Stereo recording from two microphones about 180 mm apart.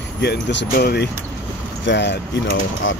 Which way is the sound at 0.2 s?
75° left (ahead or behind).